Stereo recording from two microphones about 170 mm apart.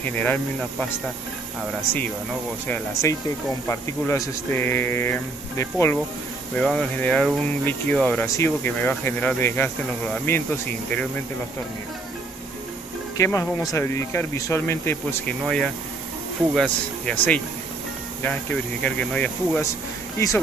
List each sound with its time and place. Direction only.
0.2 s speech: 10° left (ahead or behind)
2.7 s speech: 20° left (ahead or behind)
6.6 s speech: 5° left (ahead or behind)
13.2 s speech: 15° left (ahead or behind)